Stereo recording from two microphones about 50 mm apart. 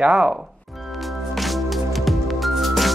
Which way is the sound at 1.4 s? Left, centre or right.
Centre.